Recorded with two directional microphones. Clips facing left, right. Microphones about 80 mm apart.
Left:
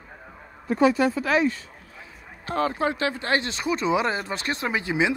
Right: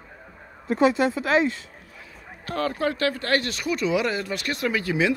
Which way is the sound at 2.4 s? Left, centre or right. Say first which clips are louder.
Left 1 dB; left.